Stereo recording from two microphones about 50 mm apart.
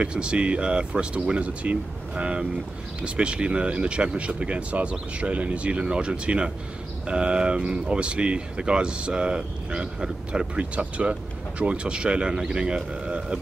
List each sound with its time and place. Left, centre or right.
0.0 s speech: right